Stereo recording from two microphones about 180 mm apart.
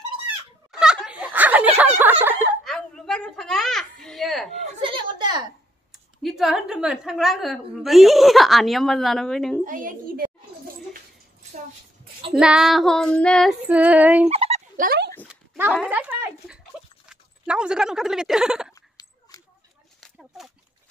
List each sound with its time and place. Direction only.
0.7 s snicker: 5° right (ahead or behind)
1.8 s a sound: 10° right (ahead or behind)
2.2 s speech: 10° right (ahead or behind)
2.6 s a sound: 5° left (ahead or behind)
4.8 s a woman's voice: 25° right (ahead or behind)
6.2 s a woman's voice: centre (ahead or behind)
9.7 s a child's voice: 50° right (ahead or behind)
12.4 s a woman's voice: 5° right (ahead or behind)
13.7 s speech: 10° right (ahead or behind)
14.3 s fowl: 35° right (ahead or behind)
14.8 s a sound: 60° right (ahead or behind)
15.2 s dog: 10° right (ahead or behind)
15.9 s speech: 10° right (ahead or behind)
20.0 s a sound: centre (ahead or behind)